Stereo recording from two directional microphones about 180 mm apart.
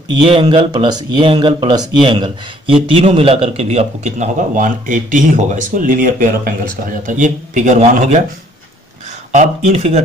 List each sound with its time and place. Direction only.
0.2 s a man's voice: 30° right (ahead or behind)
9.3 s speech: 40° right (ahead or behind)